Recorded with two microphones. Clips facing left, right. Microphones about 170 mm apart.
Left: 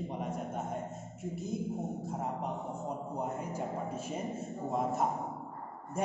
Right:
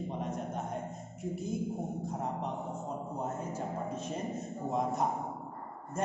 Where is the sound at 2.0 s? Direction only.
5° left (ahead or behind).